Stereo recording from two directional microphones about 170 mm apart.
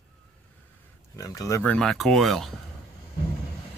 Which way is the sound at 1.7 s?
Centre (ahead or behind).